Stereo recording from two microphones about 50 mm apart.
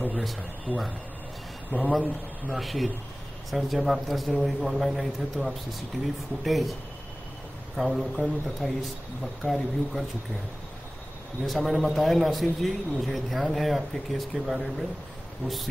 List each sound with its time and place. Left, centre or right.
0.1 s a man's voice: centre
1.7 s speech: left
2.5 s a man's voice: centre
7.7 s a man's voice: centre
11.4 s a man's voice: centre